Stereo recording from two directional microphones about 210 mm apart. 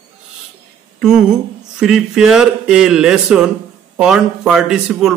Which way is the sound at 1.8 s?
Centre (ahead or behind).